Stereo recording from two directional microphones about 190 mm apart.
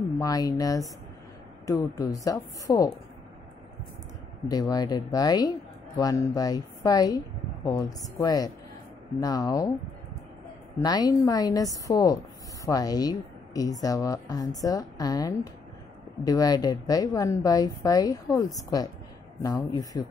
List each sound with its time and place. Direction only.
0.2 s a woman's voice: 20° left (ahead or behind)
4.5 s a woman's voice: 20° left (ahead or behind)
10.8 s a woman's voice: 20° left (ahead or behind)
19.4 s a woman's voice: 20° left (ahead or behind)